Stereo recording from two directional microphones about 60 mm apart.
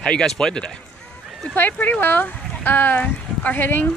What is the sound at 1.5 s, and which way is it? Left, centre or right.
Speech, left.